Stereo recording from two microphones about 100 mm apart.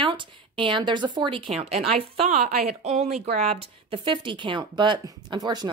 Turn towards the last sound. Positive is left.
turn(degrees=-40)  # may be behind; listen again after turning